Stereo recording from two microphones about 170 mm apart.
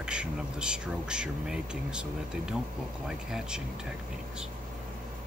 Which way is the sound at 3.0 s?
5° right (ahead or behind).